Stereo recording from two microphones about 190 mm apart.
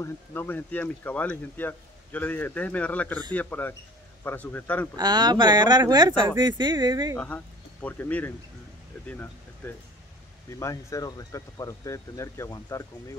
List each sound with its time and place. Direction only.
0.0 s speech: 10° left (ahead or behind)
4.9 s speech: 20° right (ahead or behind)
7.2 s speech: 10° left (ahead or behind)
9.6 s speech: 10° left (ahead or behind)